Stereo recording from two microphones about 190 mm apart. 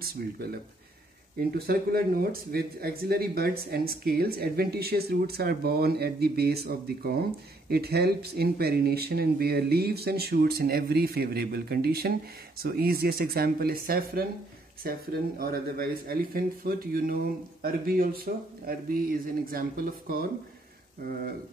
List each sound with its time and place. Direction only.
0.0 s speech: 55° right (ahead or behind)